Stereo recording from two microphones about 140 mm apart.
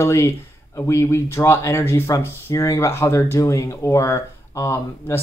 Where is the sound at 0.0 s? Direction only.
20° left (ahead or behind).